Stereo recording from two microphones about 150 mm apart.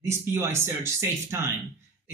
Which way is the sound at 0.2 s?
15° right (ahead or behind).